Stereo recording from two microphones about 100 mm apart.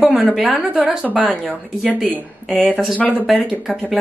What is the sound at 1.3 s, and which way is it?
Speech, centre (ahead or behind).